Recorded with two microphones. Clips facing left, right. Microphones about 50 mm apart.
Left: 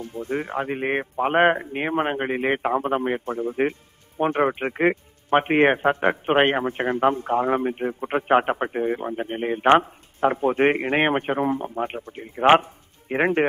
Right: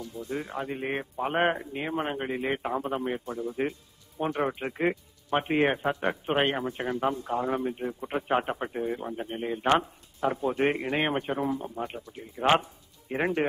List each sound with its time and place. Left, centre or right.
0.0 s speech: left